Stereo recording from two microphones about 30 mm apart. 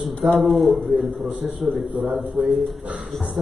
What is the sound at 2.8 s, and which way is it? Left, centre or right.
Speech, right.